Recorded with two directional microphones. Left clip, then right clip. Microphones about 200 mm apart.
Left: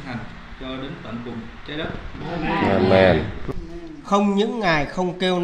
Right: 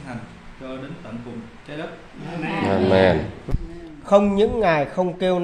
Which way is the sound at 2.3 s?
25° right (ahead or behind).